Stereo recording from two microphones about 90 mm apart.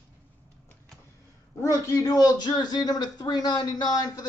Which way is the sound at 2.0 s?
45° left (ahead or behind).